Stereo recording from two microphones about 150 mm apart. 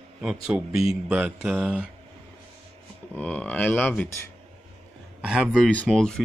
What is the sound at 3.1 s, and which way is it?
Speech, 10° left (ahead or behind).